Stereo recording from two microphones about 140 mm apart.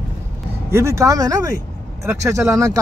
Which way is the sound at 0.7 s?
20° right (ahead or behind).